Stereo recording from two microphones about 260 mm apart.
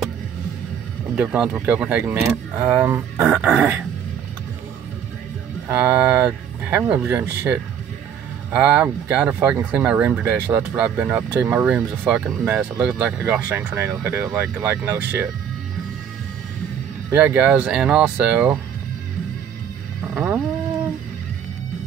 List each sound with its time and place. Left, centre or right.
1.1 s speech: centre
5.7 s speech: centre
8.5 s speech: centre
17.1 s speech: centre
20.2 s vehicle: centre